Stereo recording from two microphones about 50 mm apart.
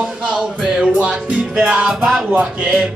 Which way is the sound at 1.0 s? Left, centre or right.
Right.